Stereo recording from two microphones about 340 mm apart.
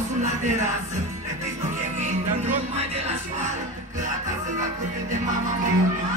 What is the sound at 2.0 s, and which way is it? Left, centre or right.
Music, centre.